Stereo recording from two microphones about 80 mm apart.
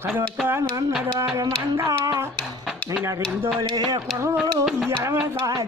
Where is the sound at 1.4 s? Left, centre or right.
Right.